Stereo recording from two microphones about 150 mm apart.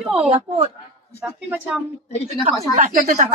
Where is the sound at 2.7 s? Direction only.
55° right (ahead or behind).